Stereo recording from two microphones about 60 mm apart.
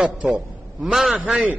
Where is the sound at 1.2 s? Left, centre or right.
Right.